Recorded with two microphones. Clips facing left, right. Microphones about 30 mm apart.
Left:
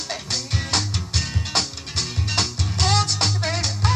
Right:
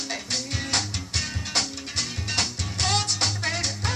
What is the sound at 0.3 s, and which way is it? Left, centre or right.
Music, left.